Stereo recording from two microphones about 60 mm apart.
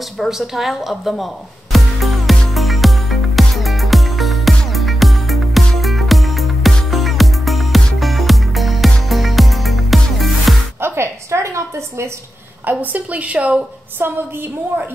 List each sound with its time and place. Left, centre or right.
0.2 s speech: centre
2.5 s music: centre
10.8 s a sound: right
12.6 s a woman's voice: right